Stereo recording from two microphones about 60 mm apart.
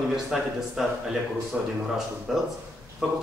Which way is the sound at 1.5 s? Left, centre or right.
Right.